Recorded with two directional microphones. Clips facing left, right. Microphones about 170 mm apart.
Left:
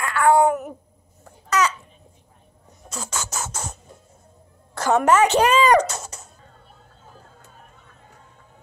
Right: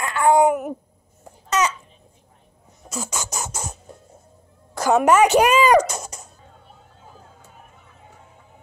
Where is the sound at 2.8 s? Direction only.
10° right (ahead or behind).